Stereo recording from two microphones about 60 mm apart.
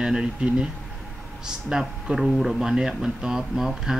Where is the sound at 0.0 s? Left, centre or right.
Centre.